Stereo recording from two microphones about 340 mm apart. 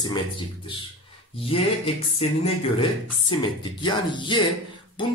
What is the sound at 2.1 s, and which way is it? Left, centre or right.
Speech, centre.